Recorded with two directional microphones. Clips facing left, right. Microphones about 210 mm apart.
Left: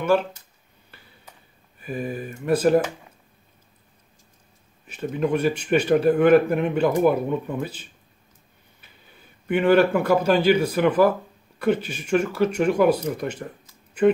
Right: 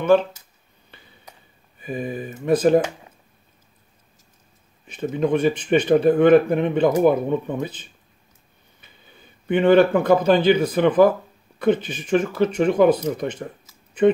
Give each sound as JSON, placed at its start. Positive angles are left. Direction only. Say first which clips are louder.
{"t": 1.8, "sound": "speech", "louder": "right 1 dB", "side_deg": 5}
{"t": 5.2, "sound": "speech", "louder": "right 3 dB", "side_deg": 10}
{"t": 9.5, "sound": "speech", "louder": "right 3 dB", "side_deg": 5}